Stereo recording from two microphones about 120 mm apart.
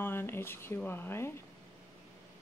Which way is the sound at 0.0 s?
20° left (ahead or behind).